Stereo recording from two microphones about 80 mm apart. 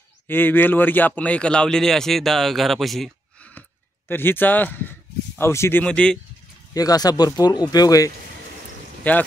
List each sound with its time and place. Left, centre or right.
0.3 s speech: left; by 3.1 s centre
4.1 s speech: left
5.4 s speech: left
5.9 s speech: centre
6.7 s speech: left
9.0 s speech: left